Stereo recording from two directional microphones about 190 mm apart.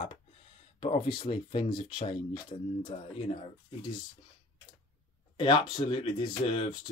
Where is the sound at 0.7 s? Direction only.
30° left (ahead or behind).